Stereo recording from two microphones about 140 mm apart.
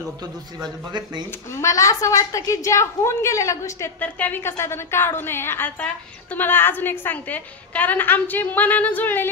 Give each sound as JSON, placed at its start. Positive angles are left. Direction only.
{"t": 0.2, "sound": "a man's voice", "side_deg": -30}
{"t": 1.5, "sound": "a woman's voice", "side_deg": 20}
{"t": 4.0, "sound": "a woman's voice", "side_deg": 15}